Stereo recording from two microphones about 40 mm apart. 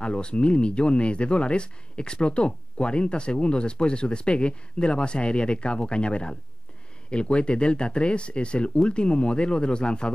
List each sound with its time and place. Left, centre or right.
0.0 s speech: left